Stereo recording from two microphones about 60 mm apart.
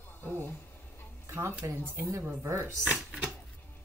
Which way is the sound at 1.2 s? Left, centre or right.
Right.